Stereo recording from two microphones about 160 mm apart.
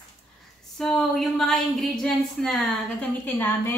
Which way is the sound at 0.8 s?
Centre (ahead or behind).